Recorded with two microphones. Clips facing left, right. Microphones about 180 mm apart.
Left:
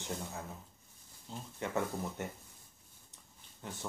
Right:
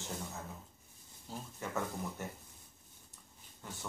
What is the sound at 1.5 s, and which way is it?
Speech, 20° left (ahead or behind).